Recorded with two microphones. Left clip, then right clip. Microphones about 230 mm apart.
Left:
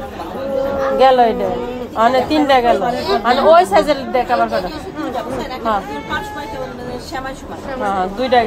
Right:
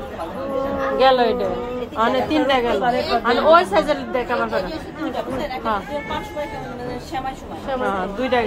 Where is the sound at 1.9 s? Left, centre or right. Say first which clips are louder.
Left 6 dB; left.